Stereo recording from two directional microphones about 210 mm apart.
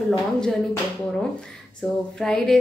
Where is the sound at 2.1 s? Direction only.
5° left (ahead or behind).